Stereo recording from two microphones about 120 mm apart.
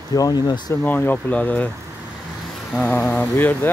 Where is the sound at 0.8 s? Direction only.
15° left (ahead or behind).